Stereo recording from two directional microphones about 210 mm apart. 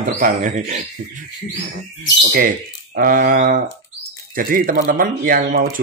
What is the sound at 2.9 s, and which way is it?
Speech, 40° right (ahead or behind).